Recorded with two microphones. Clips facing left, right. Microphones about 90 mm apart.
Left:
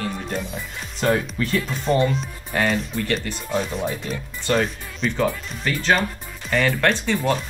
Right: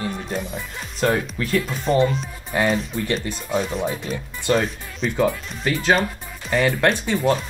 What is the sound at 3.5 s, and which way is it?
Speech, centre (ahead or behind).